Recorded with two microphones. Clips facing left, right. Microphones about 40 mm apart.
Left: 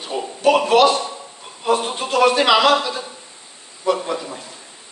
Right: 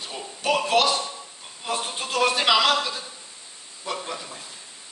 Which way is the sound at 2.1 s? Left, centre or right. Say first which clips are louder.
Left 7 dB; centre.